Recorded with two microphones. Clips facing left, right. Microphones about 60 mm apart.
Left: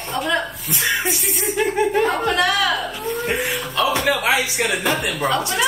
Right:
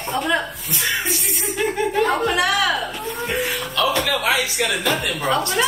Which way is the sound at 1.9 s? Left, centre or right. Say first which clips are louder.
Even; centre.